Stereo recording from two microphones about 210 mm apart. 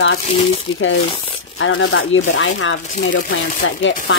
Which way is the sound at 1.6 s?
65° left (ahead or behind).